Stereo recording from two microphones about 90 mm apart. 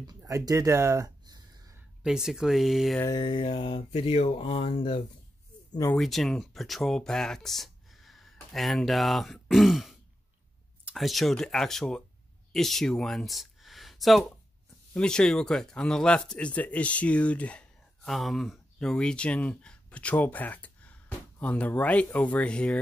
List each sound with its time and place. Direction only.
0.2 s a sound: 40° right (ahead or behind)
2.0 s speech: 5° right (ahead or behind)
3.1 s mantra: 60° left (ahead or behind); by 5.0 s 80° left
5.9 s speech: centre (ahead or behind)
11.0 s speech: centre (ahead or behind)
18.0 s speech: centre (ahead or behind)